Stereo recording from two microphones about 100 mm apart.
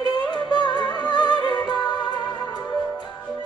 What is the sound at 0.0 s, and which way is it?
Music, 45° left (ahead or behind).